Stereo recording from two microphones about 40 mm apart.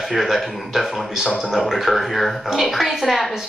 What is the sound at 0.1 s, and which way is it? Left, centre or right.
Speech, centre.